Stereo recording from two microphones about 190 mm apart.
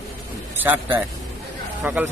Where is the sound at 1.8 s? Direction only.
10° right (ahead or behind).